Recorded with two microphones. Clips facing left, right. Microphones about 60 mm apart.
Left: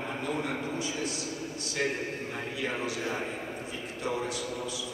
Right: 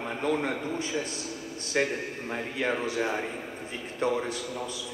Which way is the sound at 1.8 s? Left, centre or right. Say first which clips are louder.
Right 4 dB; right.